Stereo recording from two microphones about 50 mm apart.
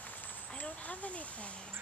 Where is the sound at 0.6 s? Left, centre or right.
Left.